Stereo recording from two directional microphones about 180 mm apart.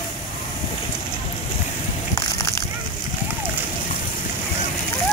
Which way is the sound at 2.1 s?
15° left (ahead or behind).